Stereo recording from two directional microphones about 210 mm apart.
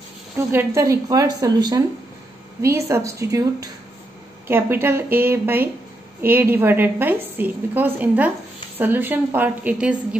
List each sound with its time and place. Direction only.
0.4 s a woman's voice: 10° right (ahead or behind)